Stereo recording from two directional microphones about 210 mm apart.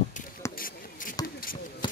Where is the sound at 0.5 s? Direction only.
40° left (ahead or behind).